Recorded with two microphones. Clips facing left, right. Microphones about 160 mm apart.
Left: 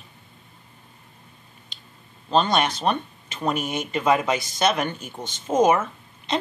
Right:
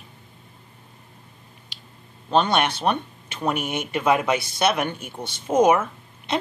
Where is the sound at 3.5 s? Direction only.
65° right (ahead or behind).